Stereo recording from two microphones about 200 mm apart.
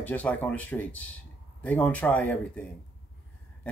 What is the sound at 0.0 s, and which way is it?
Speech, 5° left (ahead or behind).